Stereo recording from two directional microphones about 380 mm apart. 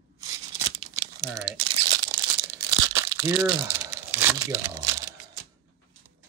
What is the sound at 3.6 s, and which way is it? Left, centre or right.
Speech, centre.